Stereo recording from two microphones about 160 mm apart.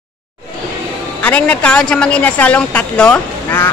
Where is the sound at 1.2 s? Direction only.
10° left (ahead or behind).